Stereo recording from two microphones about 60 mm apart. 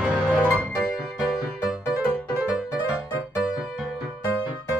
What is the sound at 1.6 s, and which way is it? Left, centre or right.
Music, centre.